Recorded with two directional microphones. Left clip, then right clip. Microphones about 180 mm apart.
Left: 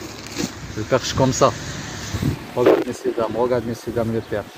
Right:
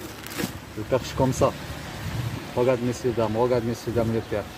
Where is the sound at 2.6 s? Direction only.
Centre (ahead or behind).